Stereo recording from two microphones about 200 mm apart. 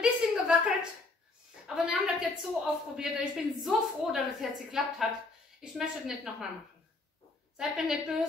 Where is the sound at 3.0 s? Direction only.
5° right (ahead or behind).